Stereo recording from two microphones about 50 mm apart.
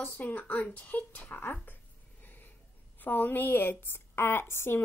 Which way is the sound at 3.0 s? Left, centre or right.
Left.